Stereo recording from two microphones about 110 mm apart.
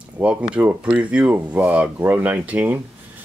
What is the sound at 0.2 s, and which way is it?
Speech, 10° right (ahead or behind).